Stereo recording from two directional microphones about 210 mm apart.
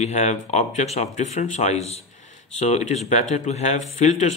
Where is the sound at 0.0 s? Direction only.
35° left (ahead or behind).